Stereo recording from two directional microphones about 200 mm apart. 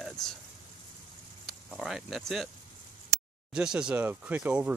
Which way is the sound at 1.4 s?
Centre (ahead or behind).